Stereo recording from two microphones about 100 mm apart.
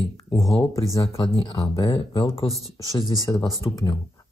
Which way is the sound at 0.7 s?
30° left (ahead or behind).